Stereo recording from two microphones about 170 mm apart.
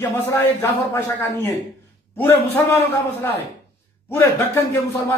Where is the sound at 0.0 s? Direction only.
15° left (ahead or behind).